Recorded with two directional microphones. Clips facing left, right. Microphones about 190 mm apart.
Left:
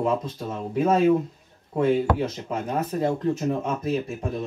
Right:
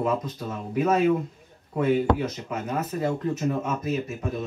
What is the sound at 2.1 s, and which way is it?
Speech, 30° left (ahead or behind).